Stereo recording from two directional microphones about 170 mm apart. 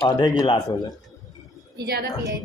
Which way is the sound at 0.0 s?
25° left (ahead or behind).